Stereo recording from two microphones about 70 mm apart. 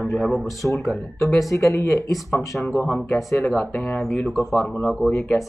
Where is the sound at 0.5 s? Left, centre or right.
Left.